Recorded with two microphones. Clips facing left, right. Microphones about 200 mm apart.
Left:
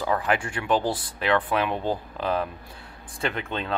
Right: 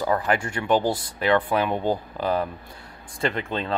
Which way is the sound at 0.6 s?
15° right (ahead or behind).